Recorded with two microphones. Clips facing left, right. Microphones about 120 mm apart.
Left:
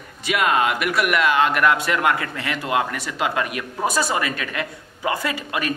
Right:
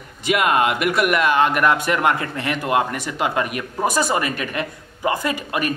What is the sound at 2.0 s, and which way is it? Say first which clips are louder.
A man's voice: right 2 dB; 30° right (ahead or behind).